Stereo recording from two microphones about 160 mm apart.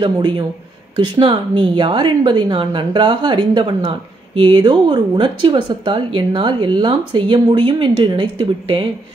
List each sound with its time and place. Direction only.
0.0 s speech: 30° right (ahead or behind)